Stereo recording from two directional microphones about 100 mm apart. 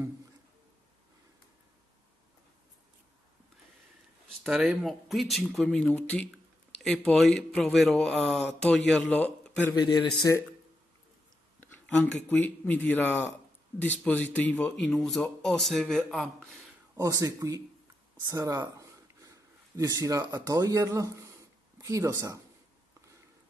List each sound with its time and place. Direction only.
4.4 s speech: 5° right (ahead or behind)
9.8 s speech: 50° left (ahead or behind)
11.6 s speech: 15° left (ahead or behind)
16.9 s speech: 35° right (ahead or behind)
18.3 s a sound: 35° right (ahead or behind)
19.8 s speech: 40° right (ahead or behind)